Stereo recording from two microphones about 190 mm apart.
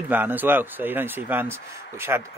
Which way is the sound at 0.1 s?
10° right (ahead or behind).